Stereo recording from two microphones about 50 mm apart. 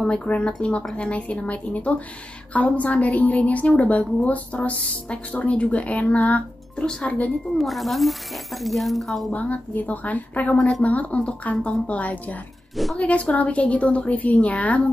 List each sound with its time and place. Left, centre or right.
0.1 s a woman's voice: left
7.5 s speech: centre
9.3 s a woman's voice: left